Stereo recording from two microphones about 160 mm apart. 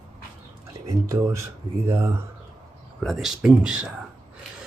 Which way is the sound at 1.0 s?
20° right (ahead or behind).